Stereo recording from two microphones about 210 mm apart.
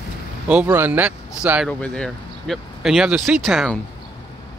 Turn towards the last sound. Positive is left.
turn(degrees=0)  # may be behind; listen again after turning